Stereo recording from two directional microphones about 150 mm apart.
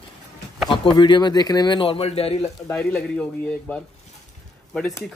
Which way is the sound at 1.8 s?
40° left (ahead or behind).